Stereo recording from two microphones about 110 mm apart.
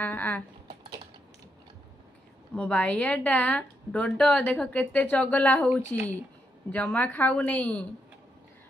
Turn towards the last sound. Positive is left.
turn(degrees=15)  # may be behind; listen again after turning